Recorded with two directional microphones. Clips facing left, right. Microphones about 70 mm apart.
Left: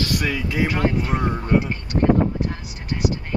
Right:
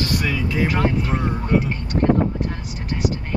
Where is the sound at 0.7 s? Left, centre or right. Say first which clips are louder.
Right 1 dB; centre.